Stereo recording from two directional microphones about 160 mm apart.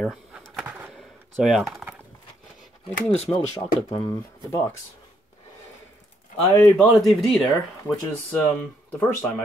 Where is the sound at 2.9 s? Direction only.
40° left (ahead or behind).